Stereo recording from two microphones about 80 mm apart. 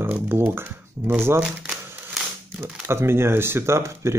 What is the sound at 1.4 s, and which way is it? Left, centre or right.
Crumpling, centre.